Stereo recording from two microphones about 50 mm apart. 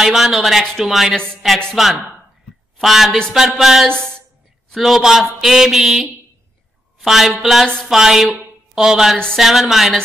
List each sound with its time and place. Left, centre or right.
0.0 s speech: centre
3.9 s speech: centre
4.6 s a woman's voice: centre